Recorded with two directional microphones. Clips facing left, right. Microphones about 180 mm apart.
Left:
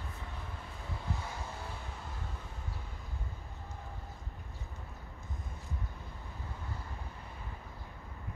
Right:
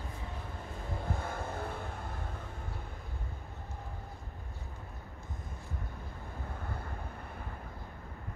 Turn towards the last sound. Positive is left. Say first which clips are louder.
# right 3 dB
turn(degrees=-55)  # may be behind; listen again after turning